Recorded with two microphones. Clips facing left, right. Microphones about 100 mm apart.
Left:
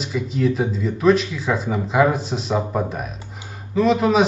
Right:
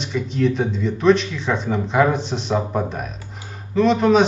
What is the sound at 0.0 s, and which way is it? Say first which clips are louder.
A man's voice: right 1 dB; 5° left (ahead or behind).